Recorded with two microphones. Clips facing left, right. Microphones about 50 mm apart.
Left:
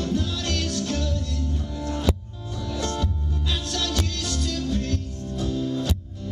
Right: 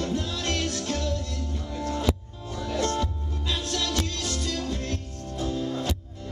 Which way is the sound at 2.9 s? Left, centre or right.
Centre.